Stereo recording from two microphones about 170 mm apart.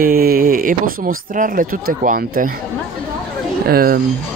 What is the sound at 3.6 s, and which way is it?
Speech, 60° right (ahead or behind).